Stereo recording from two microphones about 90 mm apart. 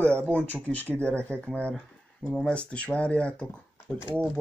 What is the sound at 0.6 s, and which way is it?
Speech, 20° left (ahead or behind).